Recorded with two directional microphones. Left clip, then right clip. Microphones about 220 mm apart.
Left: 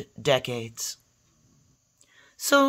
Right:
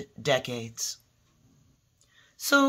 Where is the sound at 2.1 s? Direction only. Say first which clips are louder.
Left 2 dB; 35° left (ahead or behind).